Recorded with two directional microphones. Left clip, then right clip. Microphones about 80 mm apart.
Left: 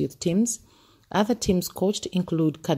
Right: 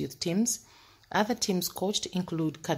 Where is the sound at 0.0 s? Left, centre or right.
Left.